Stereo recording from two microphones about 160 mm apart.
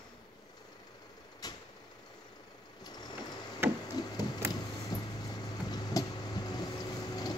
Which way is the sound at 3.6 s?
15° right (ahead or behind).